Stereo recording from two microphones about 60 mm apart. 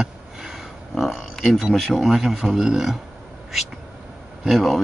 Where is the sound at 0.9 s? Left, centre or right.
Centre.